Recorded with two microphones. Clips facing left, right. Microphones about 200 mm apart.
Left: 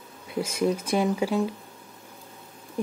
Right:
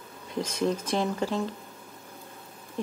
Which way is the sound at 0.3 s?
10° left (ahead or behind).